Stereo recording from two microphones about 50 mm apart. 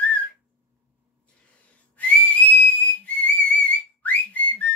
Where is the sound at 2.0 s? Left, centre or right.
Left.